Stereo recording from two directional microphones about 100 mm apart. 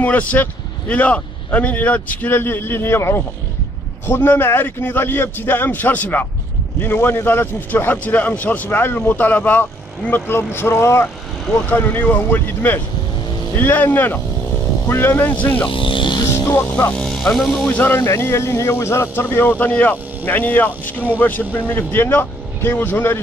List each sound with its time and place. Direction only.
0.0 s a man's voice: 15° left (ahead or behind)
15.7 s speech: 60° left (ahead or behind)
16.3 s music: 25° left (ahead or behind)
16.9 s speech: 5° left (ahead or behind)
17.6 s a man's voice: 20° left (ahead or behind)